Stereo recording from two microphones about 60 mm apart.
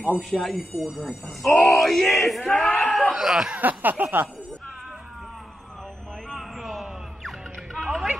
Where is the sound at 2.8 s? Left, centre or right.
Centre.